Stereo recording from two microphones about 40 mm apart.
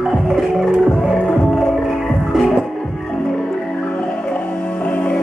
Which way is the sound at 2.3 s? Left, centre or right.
Centre.